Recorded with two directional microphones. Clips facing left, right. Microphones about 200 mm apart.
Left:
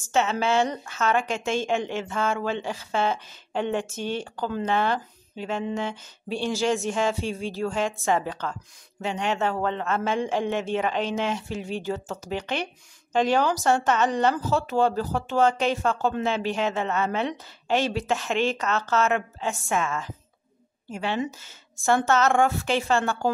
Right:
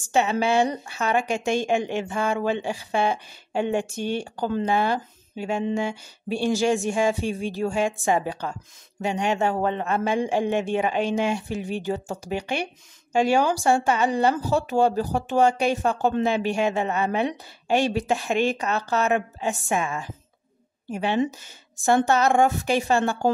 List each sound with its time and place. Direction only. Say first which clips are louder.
0.1 s a woman's voice: right 2 dB; 15° right (ahead or behind)